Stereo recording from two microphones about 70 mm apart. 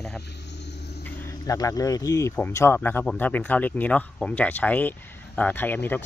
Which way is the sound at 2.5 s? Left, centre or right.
Left.